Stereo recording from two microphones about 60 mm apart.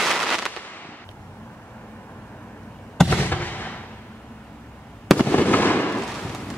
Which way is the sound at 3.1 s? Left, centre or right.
Left.